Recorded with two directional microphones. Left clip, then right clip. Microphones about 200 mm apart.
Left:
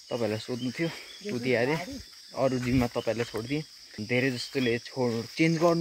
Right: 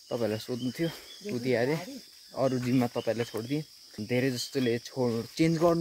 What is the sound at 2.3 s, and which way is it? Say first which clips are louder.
Cricket: left 1 dB; 5° right (ahead or behind).